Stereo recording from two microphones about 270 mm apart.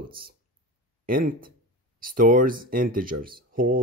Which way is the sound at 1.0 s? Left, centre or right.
Right.